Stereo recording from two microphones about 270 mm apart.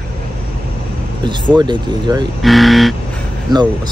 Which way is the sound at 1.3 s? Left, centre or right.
Centre.